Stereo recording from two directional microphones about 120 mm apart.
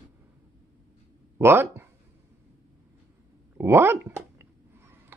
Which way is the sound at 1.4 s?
20° right (ahead or behind).